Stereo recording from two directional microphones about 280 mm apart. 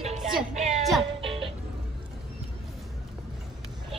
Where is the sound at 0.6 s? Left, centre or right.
Right.